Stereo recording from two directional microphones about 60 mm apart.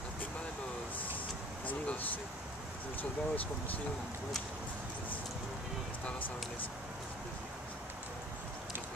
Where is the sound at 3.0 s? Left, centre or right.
Left.